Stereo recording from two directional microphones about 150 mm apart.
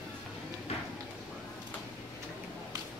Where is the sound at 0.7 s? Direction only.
40° left (ahead or behind).